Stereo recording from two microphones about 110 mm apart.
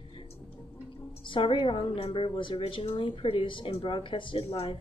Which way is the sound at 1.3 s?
50° left (ahead or behind).